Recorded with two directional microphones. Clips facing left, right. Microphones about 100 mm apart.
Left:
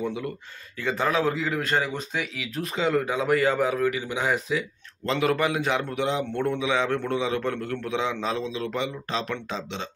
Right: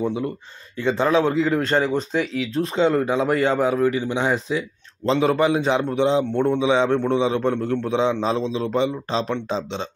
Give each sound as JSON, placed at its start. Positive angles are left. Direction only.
{"t": 0.0, "sound": "a man's voice", "side_deg": -30}